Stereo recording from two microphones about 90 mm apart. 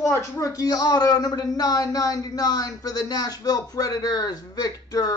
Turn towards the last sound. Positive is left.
turn(degrees=40)  # may be behind; listen again after turning